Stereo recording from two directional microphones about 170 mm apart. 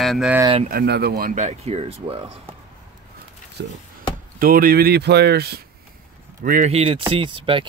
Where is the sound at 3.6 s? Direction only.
85° right.